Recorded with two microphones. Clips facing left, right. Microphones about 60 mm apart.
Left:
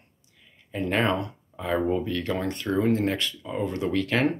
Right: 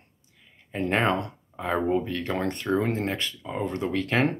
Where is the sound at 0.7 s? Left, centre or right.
Right.